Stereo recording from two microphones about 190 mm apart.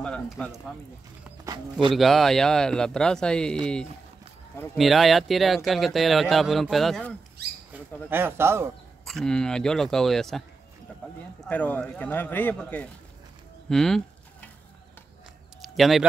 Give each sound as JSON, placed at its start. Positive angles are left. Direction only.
{"t": 0.0, "sound": "a sound", "side_deg": 5}
{"t": 1.4, "sound": "speech", "side_deg": -25}
{"t": 2.0, "sound": "speech", "side_deg": 0}
{"t": 7.7, "sound": "speech", "side_deg": -10}
{"t": 9.0, "sound": "speech", "side_deg": 5}
{"t": 10.9, "sound": "a sound", "side_deg": 5}
{"t": 11.4, "sound": "speech", "side_deg": 10}
{"t": 13.7, "sound": "a sound", "side_deg": 5}
{"t": 15.6, "sound": "speech", "side_deg": 0}